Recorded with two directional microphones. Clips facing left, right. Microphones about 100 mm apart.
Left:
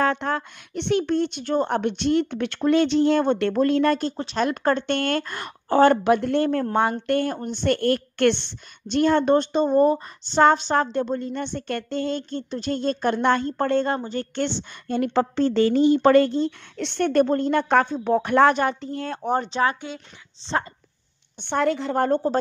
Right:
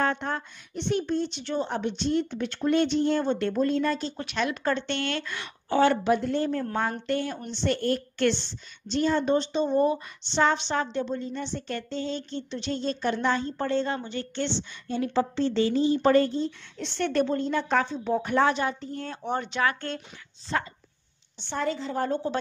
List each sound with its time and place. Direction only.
0.0 s a woman's voice: 90° left; by 4.1 s 65° left (ahead or behind)
4.2 s speech: 30° left (ahead or behind)
4.5 s a woman's voice: 50° left (ahead or behind); by 17.0 s 65° left (ahead or behind)
17.0 s a woman's voice: 50° left (ahead or behind)
18.8 s speech: 90° left
19.2 s speech: 35° left (ahead or behind)
21.4 s a woman's voice: 60° left (ahead or behind)